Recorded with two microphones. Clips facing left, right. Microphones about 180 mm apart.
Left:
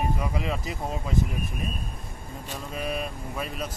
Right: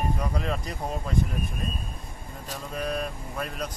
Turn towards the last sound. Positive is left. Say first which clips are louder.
# left 1 dB
turn(degrees=5)  # may be behind; listen again after turning